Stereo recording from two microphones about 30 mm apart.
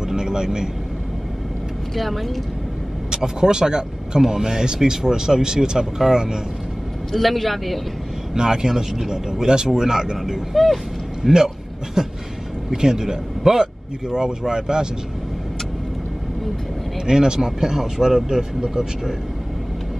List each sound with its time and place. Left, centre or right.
0.1 s vehicle: right
2.0 s a man's voice: centre
3.3 s speech: right
7.1 s a man's voice: centre
8.4 s speech: right
10.5 s a man's voice: centre
11.2 s a man's voice: centre
14.0 s speech: right
17.0 s speech: right